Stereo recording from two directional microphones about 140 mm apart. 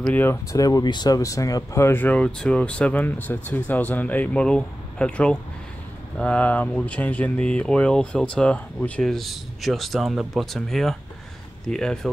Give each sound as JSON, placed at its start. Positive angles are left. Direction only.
{"t": 0.1, "sound": "speech", "side_deg": 15}